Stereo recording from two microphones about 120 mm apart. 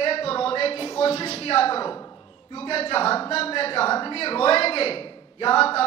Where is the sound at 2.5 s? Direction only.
55° left (ahead or behind).